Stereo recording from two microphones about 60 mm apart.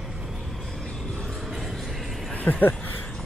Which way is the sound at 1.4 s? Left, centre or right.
Centre.